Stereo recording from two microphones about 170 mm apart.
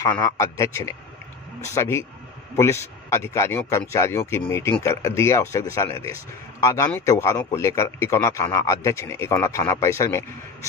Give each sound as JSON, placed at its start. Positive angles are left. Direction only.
{"t": 0.0, "sound": "a man's voice", "side_deg": 20}